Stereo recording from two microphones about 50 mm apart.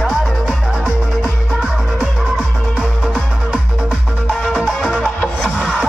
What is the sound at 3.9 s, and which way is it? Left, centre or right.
Music, centre.